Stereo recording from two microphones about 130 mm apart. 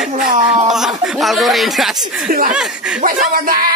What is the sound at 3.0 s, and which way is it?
Speech, 90° right.